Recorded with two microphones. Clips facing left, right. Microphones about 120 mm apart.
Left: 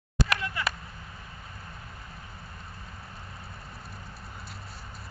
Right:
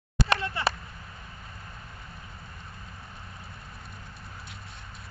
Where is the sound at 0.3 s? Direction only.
30° right (ahead or behind).